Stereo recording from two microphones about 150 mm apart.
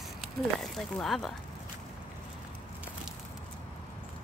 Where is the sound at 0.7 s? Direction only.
Centre (ahead or behind).